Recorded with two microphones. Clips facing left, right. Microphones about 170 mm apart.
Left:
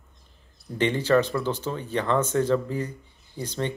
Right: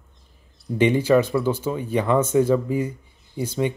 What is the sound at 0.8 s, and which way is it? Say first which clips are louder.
Speech: right 4 dB; 10° right (ahead or behind).